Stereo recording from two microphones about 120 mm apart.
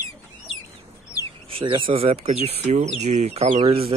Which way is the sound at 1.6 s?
45° right (ahead or behind).